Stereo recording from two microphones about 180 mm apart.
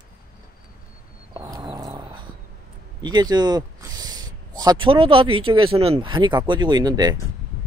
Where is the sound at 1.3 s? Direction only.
25° right (ahead or behind).